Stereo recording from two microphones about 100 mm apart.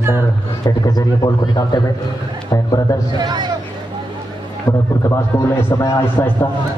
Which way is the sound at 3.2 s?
50° right (ahead or behind).